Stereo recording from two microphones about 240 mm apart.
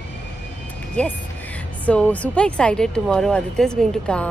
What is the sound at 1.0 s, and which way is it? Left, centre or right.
Speech, centre.